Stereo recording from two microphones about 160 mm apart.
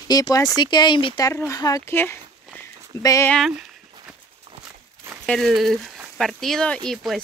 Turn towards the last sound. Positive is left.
turn(degrees=5)  # may be behind; listen again after turning